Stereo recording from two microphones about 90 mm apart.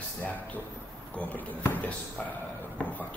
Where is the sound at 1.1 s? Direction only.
20° left (ahead or behind).